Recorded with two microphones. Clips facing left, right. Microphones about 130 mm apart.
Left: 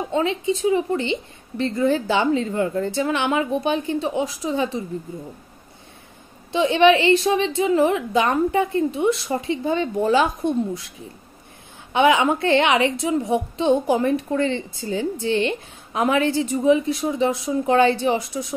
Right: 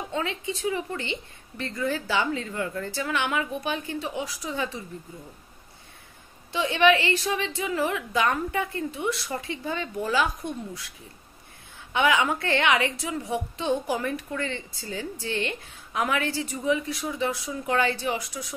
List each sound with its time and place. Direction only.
0.1 s a woman's voice: 20° left (ahead or behind)
6.5 s a woman's voice: 25° left (ahead or behind)
11.9 s a woman's voice: 20° left (ahead or behind)